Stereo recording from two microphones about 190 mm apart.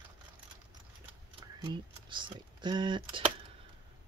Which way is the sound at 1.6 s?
25° right (ahead or behind).